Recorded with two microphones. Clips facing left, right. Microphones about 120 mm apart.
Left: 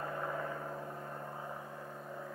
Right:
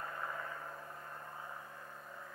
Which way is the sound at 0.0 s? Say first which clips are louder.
Left 5 dB; 20° left (ahead or behind).